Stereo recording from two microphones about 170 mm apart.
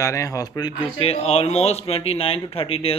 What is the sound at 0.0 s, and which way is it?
A man's voice, 20° left (ahead or behind).